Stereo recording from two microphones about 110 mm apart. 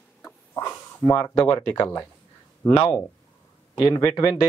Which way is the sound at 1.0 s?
40° left (ahead or behind).